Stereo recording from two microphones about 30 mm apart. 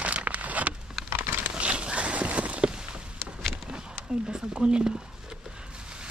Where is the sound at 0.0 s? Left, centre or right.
Right.